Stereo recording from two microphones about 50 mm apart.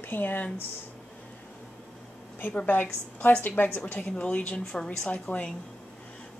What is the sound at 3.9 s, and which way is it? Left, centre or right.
Speech, left.